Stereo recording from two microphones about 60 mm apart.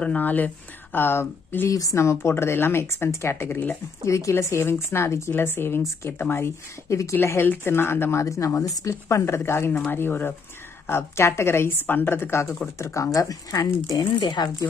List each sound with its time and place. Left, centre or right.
0.0 s speech: left
1.7 s speech: left
2.0 s speech: left
4.0 s speech: left
7.6 s speech: left
8.6 s speech: left
12.7 s speech: left